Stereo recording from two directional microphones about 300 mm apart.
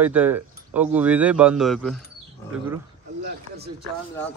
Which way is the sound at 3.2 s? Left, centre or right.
Right.